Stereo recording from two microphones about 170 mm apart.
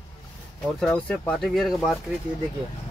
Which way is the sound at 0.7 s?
5° left (ahead or behind).